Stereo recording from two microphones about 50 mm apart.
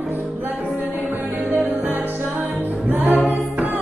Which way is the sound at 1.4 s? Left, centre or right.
Right.